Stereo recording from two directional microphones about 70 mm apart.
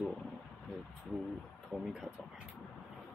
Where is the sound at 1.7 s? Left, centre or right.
Centre.